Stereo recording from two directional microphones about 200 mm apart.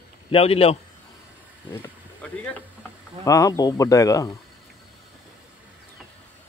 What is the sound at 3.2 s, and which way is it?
Speech, 15° left (ahead or behind).